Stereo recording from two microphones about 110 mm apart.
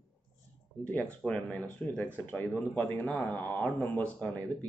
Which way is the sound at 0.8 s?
15° left (ahead or behind).